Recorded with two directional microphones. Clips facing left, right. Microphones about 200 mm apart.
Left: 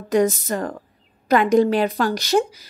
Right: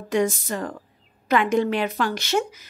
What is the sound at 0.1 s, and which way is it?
Speech, 45° left (ahead or behind).